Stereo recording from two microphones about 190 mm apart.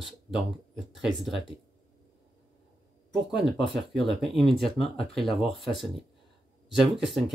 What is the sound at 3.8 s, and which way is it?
Speech, centre (ahead or behind).